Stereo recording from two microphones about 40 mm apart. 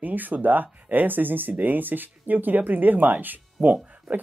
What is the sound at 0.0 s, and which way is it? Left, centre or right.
Speech, right.